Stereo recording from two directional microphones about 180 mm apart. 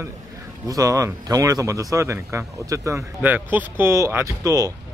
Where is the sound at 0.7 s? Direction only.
20° right (ahead or behind).